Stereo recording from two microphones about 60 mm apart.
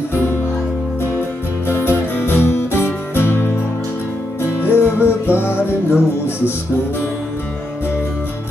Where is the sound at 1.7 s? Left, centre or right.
Left.